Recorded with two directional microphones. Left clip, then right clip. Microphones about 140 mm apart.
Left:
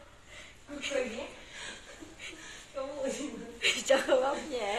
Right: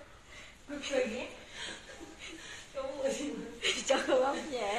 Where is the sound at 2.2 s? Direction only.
50° left (ahead or behind).